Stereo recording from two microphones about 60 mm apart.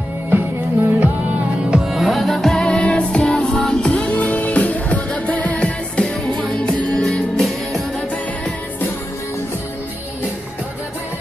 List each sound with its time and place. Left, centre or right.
0.8 s music: right
1.7 s music: centre